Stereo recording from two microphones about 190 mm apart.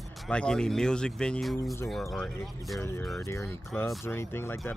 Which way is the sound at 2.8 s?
15° left (ahead or behind).